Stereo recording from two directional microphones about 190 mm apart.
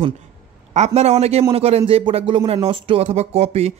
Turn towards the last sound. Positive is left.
turn(degrees=-35)  # may be behind; listen again after turning